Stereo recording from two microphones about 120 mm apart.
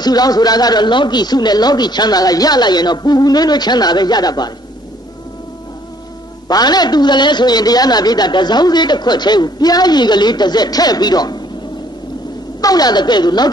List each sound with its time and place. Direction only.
0.0 s a man's voice: 35° left (ahead or behind)
6.4 s a man's voice: 35° left (ahead or behind)
12.6 s a man's voice: 35° left (ahead or behind)